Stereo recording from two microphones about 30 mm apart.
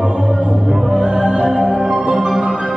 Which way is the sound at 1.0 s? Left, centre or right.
Right.